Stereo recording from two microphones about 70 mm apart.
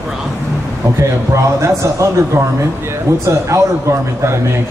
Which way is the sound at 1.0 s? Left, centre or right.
Right.